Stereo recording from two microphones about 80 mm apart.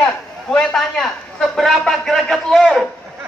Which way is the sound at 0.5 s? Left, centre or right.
Centre.